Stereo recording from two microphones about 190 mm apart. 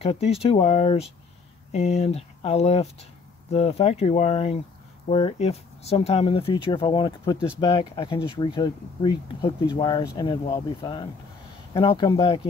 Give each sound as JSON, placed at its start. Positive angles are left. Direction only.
{"t": 0.0, "sound": "speech", "side_deg": 30}